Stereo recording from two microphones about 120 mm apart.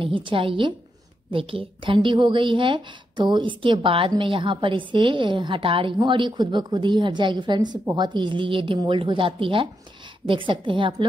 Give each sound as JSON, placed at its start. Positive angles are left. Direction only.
{"t": 0.0, "sound": "a woman's voice", "side_deg": -45}